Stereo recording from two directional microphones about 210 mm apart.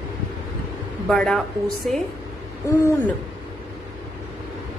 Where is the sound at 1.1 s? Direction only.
Centre (ahead or behind).